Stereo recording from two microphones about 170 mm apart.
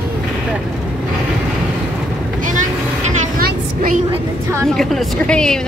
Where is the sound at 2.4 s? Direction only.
45° right (ahead or behind).